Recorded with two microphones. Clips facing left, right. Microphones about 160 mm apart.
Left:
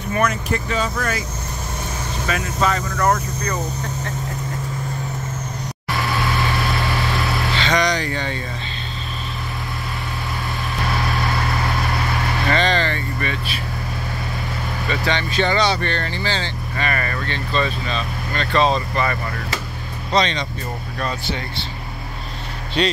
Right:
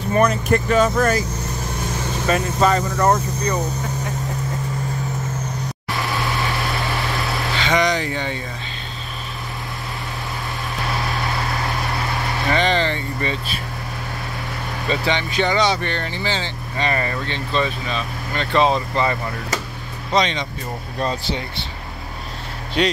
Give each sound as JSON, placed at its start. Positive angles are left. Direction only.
{"t": 0.1, "sound": "speech", "side_deg": -35}
{"t": 0.5, "sound": "speech", "side_deg": -50}
{"t": 2.2, "sound": "speech", "side_deg": -35}
{"t": 7.5, "sound": "speech", "side_deg": -10}
{"t": 12.4, "sound": "speech", "side_deg": -15}
{"t": 15.0, "sound": "speech", "side_deg": -15}